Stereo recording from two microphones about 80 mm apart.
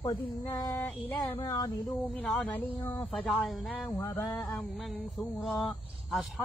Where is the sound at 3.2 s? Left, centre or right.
Centre.